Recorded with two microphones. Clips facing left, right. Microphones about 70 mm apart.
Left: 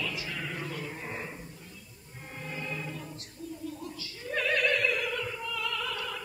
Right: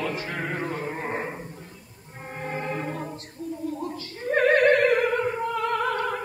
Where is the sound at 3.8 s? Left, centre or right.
Right.